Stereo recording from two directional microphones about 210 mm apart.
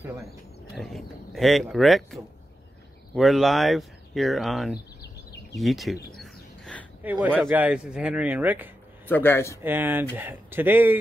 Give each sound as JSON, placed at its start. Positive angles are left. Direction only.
{"t": 0.7, "sound": "speech", "side_deg": 0}
{"t": 5.0, "sound": "a sound", "side_deg": 50}
{"t": 5.6, "sound": "speech", "side_deg": 0}
{"t": 6.1, "sound": "bird", "side_deg": 5}
{"t": 7.0, "sound": "speech", "side_deg": -10}
{"t": 9.0, "sound": "speech", "side_deg": 10}
{"t": 9.6, "sound": "speech", "side_deg": -10}